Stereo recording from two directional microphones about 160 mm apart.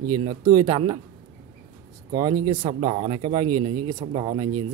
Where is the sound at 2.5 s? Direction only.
35° right (ahead or behind).